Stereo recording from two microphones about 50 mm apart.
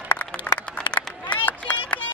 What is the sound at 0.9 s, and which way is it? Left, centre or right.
Run, left.